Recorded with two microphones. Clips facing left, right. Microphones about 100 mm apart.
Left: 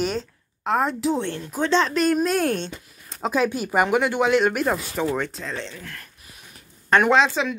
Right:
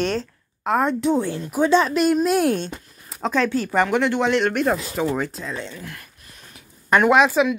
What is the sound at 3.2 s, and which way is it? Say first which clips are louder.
Speech: right 1 dB; 10° left (ahead or behind).